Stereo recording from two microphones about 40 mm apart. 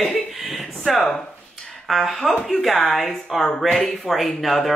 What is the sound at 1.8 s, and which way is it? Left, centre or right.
Speech, centre.